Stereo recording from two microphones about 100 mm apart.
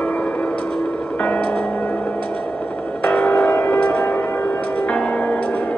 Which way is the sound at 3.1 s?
15° left (ahead or behind).